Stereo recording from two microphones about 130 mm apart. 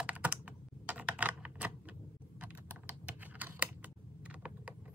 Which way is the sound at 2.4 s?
10° right (ahead or behind).